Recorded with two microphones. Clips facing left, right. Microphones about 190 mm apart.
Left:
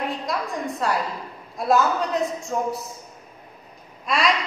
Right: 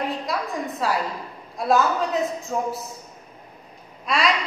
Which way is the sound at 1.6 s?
Centre (ahead or behind).